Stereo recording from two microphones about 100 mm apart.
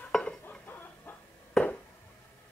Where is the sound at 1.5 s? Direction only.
10° left (ahead or behind).